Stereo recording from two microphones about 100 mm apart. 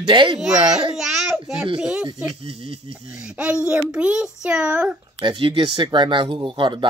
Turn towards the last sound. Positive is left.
turn(degrees=-55)  # may be behind; listen again after turning